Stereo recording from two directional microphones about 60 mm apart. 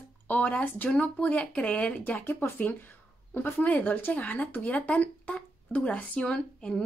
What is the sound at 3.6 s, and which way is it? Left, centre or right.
Speech, left.